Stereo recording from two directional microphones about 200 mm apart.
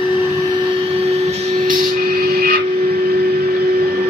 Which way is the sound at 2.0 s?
50° right (ahead or behind).